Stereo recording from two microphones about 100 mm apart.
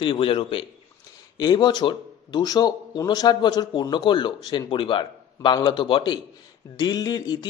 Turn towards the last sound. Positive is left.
turn(degrees=45)  # may be behind; listen again after turning